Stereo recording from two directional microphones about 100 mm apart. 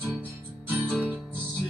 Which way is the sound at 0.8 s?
10° left (ahead or behind).